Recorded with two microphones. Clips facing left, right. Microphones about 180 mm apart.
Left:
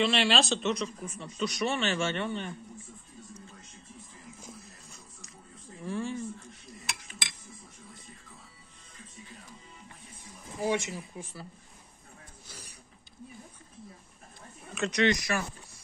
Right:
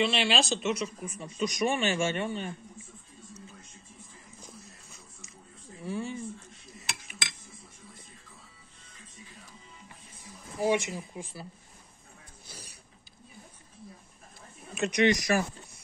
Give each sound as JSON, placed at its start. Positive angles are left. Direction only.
{"t": 0.0, "sound": "speech", "side_deg": 0}
{"t": 5.9, "sound": "speech", "side_deg": -5}
{"t": 10.6, "sound": "speech", "side_deg": -15}
{"t": 14.7, "sound": "speech", "side_deg": -20}